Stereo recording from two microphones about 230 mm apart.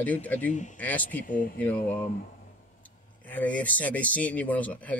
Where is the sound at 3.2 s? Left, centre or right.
Centre.